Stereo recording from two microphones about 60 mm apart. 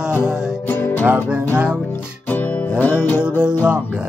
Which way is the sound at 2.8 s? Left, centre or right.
Left.